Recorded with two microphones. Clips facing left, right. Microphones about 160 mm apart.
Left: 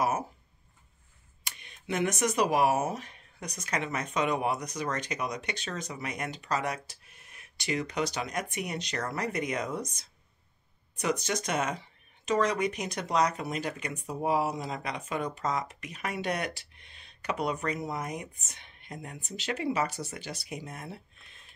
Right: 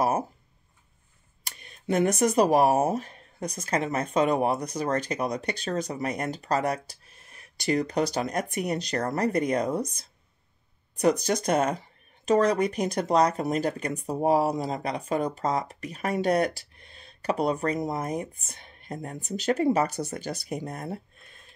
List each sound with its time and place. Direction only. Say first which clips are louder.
1.4 s speech: right 4 dB; 40° right (ahead or behind)